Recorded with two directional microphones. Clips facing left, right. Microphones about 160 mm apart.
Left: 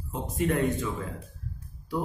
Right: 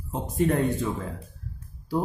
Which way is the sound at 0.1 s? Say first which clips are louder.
Right 3 dB; 30° right (ahead or behind).